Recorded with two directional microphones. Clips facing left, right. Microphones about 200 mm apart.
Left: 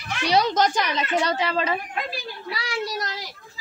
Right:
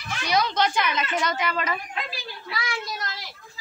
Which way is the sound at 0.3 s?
40° left (ahead or behind).